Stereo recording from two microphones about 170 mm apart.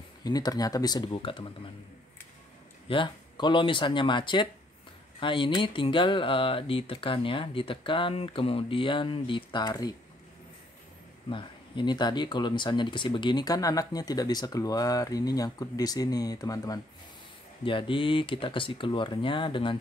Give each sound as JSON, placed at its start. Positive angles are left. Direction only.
{"t": 0.2, "sound": "speech", "side_deg": 25}
{"t": 2.9, "sound": "speech", "side_deg": 25}
{"t": 11.2, "sound": "speech", "side_deg": 30}